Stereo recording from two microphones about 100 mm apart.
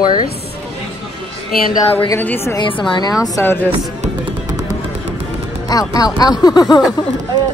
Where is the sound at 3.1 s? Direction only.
35° left (ahead or behind).